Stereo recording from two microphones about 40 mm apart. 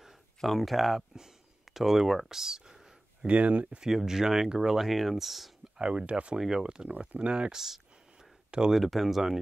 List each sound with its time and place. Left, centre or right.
0.4 s speech: centre
1.1 s a sound: centre
3.3 s speech: right
3.8 s speech: centre
5.8 s speech: right
7.5 s a sound: centre
8.5 s speech: right
8.7 s speech: centre